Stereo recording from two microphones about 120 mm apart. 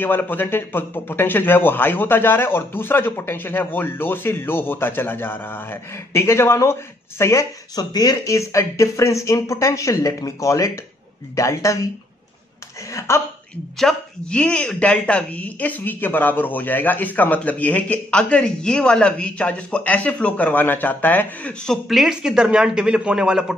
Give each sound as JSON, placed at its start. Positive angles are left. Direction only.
{"t": 0.0, "sound": "speech", "side_deg": 15}
{"t": 12.9, "sound": "speech", "side_deg": 25}
{"t": 13.7, "sound": "speech", "side_deg": 5}
{"t": 21.8, "sound": "speech", "side_deg": -5}